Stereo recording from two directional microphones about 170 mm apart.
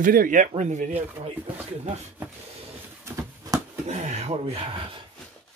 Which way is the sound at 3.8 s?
40° right (ahead or behind).